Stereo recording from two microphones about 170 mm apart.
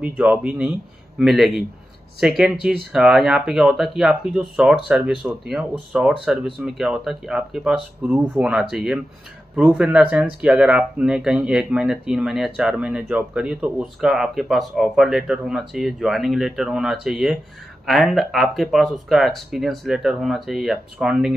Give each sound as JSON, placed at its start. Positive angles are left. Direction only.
{"t": 0.0, "sound": "speech", "side_deg": -10}